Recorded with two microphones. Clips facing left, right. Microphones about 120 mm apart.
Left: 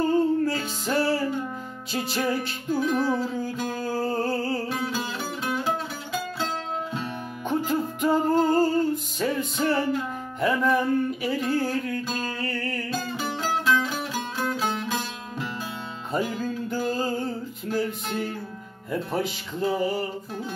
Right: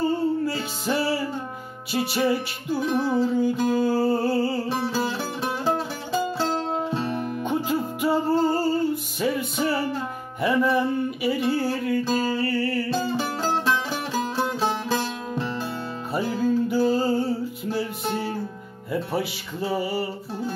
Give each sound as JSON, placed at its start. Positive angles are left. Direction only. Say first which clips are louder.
{"t": 0.5, "sound": "music", "louder": "right 1 dB", "side_deg": -5}
{"t": 4.6, "sound": "music", "louder": "right 4 dB", "side_deg": -30}
{"t": 6.9, "sound": "music", "louder": "right 5 dB", "side_deg": -30}
{"t": 7.4, "sound": "music", "louder": "left 2 dB", "side_deg": -10}
{"t": 13.1, "sound": "music", "louder": "right 3 dB", "side_deg": -30}
{"t": 16.3, "sound": "music", "louder": "right 7 dB", "side_deg": -10}